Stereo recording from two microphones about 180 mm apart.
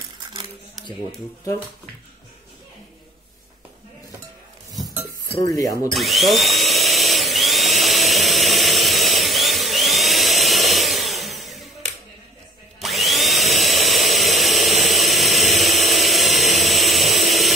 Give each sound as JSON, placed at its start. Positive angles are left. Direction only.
{"t": 5.4, "sound": "speech", "side_deg": 20}
{"t": 5.9, "sound": "drill", "side_deg": 0}
{"t": 12.8, "sound": "tools", "side_deg": 0}